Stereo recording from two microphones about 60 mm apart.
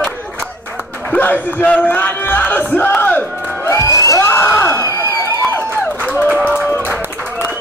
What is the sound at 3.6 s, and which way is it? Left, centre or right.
Crowd, left.